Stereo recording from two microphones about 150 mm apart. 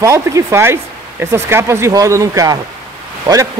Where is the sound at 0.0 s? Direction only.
20° right (ahead or behind).